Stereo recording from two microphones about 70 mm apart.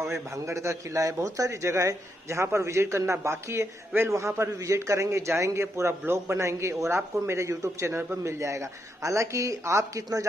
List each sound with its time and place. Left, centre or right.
0.0 s a man's voice: right